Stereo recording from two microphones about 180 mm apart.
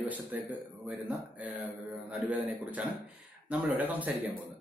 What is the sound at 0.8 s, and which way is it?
Speech, 10° right (ahead or behind).